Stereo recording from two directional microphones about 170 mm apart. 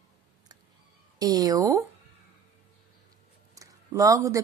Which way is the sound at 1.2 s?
20° right (ahead or behind).